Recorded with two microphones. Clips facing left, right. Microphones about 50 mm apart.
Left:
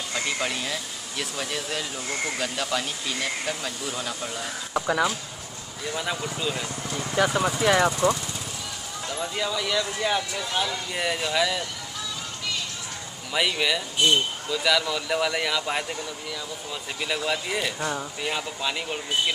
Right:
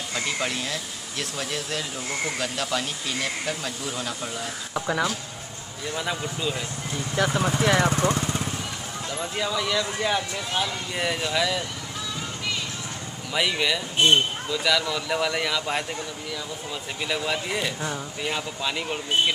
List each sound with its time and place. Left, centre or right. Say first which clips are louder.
0.1 s speech: even; centre
6.9 s vehicle: even; left
7.2 s speech: left 1 dB; centre
7.9 s speech: even; right
9.1 s speech: even; centre
13.3 s speech: even; centre
13.9 s speech: right 3 dB; right
14.5 s speech: left 1 dB; centre